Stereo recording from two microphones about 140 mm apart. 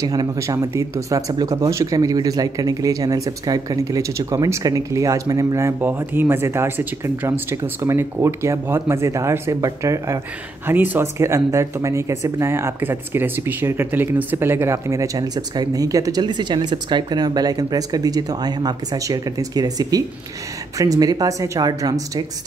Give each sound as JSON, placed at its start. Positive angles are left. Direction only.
{"t": 0.0, "sound": "speech", "side_deg": -25}